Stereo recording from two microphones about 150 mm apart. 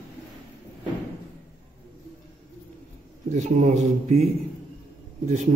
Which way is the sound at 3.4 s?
50° right (ahead or behind).